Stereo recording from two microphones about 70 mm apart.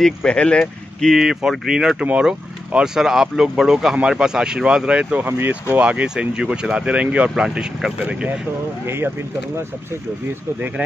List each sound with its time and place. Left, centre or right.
0.0 s speech: centre
1.1 s speech: centre
5.2 s speech: right
8.8 s speech: right